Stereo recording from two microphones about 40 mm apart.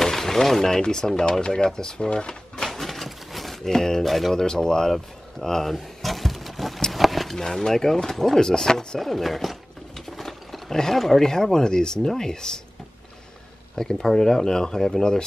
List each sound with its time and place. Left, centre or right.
0.0 s a sound: centre
0.8 s speech: centre
2.6 s a sound: centre
3.6 s speech: centre
4.0 s speech: centre
4.4 s speech: centre
9.0 s speech: centre
10.0 s a sound: centre
11.5 s speech: centre
13.7 s speech: centre